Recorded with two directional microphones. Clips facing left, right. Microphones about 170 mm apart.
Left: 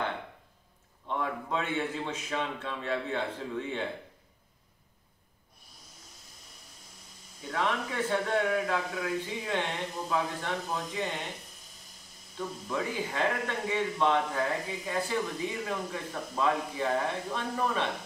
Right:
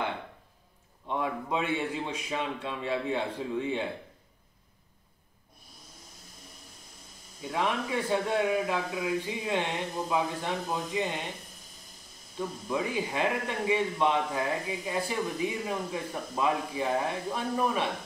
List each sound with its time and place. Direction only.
1.0 s speech: 15° right (ahead or behind)
7.5 s speech: 15° right (ahead or behind)
12.4 s speech: 15° right (ahead or behind)